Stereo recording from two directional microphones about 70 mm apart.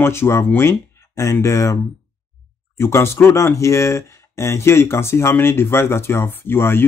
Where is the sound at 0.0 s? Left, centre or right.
Left.